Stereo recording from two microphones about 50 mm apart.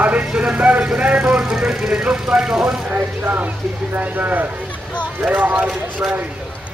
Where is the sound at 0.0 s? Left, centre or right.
Right.